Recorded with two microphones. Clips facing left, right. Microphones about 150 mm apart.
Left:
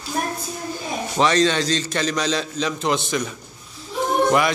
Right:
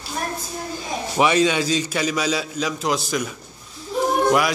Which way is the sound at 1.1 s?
10° right (ahead or behind).